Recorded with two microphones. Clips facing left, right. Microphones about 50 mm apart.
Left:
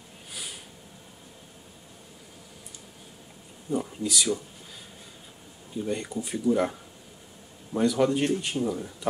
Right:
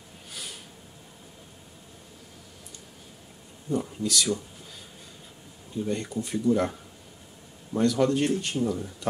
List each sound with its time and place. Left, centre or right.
0.3 s a sound: centre
3.7 s speech: centre
5.9 s speech: centre